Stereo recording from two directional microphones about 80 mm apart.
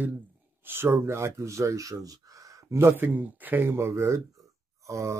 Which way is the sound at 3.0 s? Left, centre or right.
Right.